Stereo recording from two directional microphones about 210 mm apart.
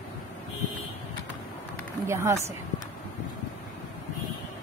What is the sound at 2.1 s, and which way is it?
Speech, 15° right (ahead or behind).